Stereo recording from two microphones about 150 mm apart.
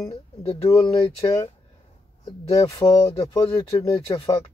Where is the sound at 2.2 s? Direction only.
30° left (ahead or behind).